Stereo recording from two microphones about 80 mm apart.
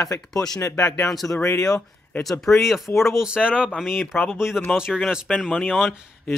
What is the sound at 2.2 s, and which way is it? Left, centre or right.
Speech, centre.